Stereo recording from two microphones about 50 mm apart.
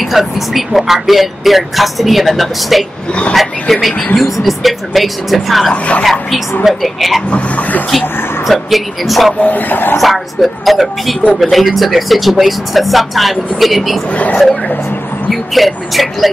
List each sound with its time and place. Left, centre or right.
0.1 s speech: centre
5.7 s speech: left
6.6 s speech: centre
7.2 s speech: left
8.5 s speech: centre
9.4 s speech: left
9.9 s speech: centre
14.1 s speech: left
15.5 s speech: centre